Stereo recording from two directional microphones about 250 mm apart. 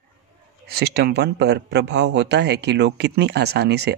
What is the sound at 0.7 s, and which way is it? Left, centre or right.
Speech, right.